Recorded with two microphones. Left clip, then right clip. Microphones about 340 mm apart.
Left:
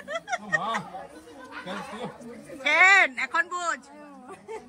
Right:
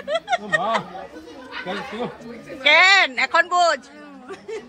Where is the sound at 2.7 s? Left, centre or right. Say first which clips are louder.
Right 4 dB; centre.